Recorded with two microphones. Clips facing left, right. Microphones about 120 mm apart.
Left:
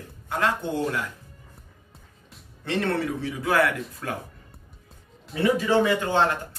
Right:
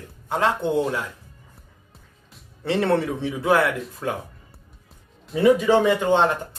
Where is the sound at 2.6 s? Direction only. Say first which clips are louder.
Right 5 dB; 30° right (ahead or behind).